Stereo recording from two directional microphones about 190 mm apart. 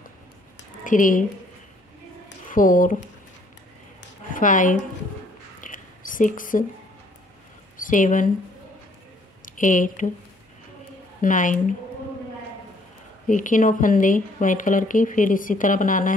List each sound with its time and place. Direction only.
0.8 s speech: 45° left (ahead or behind)
2.5 s speech: 45° left (ahead or behind)
4.3 s speech: 45° left (ahead or behind)
5.6 s mouse: 45° left (ahead or behind)
7.7 s speech: 45° left (ahead or behind)
9.6 s speech: 45° left (ahead or behind)
11.1 s speech: 45° left (ahead or behind)
13.3 s speech: 45° left (ahead or behind)